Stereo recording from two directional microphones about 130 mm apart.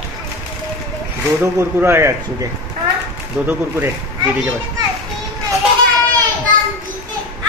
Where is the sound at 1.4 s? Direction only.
20° right (ahead or behind).